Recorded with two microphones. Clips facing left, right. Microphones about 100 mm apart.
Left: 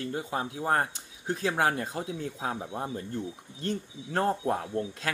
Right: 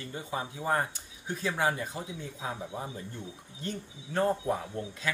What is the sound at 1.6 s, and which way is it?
Speech, 75° left (ahead or behind).